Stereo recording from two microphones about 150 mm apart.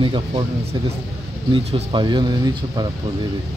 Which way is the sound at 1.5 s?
35° right (ahead or behind).